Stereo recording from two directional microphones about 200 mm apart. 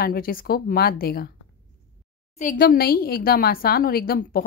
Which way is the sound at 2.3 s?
40° left (ahead or behind).